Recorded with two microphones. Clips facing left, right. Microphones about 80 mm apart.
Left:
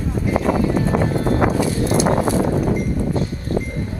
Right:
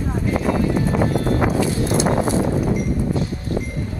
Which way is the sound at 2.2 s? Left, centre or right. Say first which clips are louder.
Left 1 dB; left.